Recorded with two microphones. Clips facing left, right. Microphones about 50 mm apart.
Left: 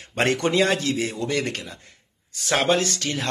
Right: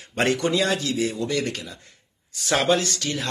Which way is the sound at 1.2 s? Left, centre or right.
Left.